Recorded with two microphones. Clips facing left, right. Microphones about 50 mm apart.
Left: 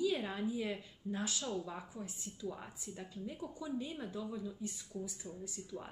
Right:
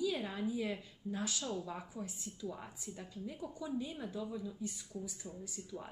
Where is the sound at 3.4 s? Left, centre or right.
Left.